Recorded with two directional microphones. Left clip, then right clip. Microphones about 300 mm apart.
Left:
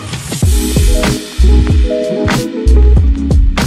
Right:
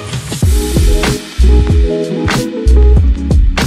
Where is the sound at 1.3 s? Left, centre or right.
Centre.